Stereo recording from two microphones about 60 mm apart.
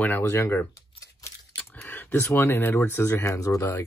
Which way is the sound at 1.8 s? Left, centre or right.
Left.